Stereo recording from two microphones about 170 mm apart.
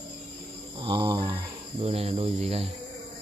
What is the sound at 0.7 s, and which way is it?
Cricket, 30° right (ahead or behind).